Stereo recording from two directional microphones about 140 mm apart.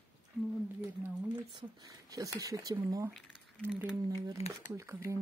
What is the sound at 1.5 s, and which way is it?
Speech, 25° right (ahead or behind).